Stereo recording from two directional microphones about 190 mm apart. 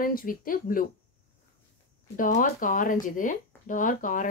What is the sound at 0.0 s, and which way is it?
Speech, 45° left (ahead or behind).